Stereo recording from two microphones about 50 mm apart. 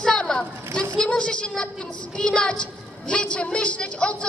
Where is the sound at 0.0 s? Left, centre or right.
Centre.